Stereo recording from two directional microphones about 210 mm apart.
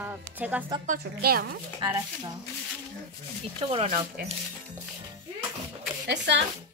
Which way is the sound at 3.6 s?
25° right (ahead or behind).